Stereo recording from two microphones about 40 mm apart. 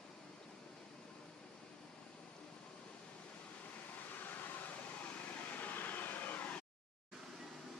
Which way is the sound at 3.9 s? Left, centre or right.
Left.